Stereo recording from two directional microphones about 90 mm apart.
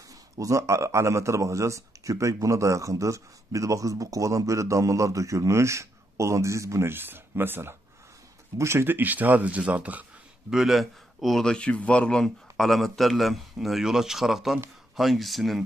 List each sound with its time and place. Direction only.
0.4 s speech: 35° right (ahead or behind); by 10.0 s 15° right (ahead or behind)
10.5 s speech: centre (ahead or behind)